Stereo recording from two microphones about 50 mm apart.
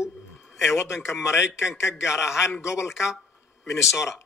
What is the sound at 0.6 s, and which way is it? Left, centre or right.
A man's voice, left.